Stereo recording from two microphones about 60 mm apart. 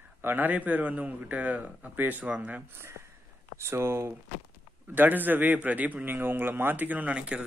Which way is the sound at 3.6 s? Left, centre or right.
Right.